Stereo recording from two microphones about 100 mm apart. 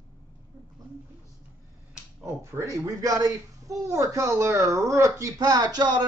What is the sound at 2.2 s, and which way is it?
Speech, 30° right (ahead or behind).